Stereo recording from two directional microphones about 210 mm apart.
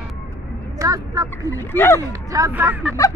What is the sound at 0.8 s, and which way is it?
Speech, 15° right (ahead or behind).